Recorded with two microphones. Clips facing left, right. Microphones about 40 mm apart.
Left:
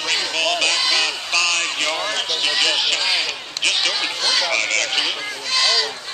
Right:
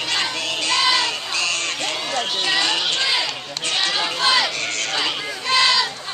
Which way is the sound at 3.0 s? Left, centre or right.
Centre.